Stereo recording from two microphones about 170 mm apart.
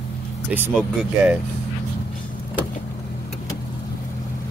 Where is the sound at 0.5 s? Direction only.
10° right (ahead or behind).